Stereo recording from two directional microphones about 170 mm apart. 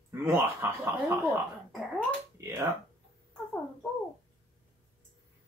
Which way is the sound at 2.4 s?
15° right (ahead or behind).